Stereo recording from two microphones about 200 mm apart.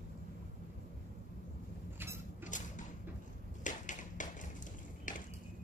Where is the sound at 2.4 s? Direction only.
40° left (ahead or behind).